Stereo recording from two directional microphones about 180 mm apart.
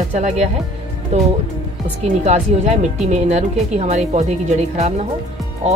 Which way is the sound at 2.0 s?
40° right (ahead or behind).